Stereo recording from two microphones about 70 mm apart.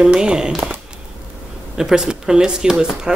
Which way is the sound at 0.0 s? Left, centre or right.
Centre.